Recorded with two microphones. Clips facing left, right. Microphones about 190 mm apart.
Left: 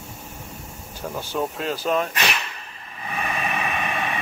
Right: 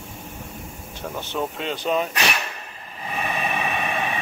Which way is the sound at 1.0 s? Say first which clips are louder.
Left 1 dB; 5° left (ahead or behind).